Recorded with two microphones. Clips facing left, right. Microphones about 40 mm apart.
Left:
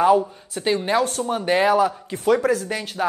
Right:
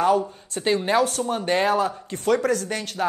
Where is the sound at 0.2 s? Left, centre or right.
Centre.